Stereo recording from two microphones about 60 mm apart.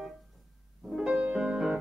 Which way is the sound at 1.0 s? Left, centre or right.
Centre.